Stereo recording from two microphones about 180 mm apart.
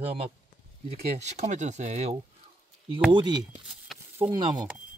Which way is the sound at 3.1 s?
25° right (ahead or behind).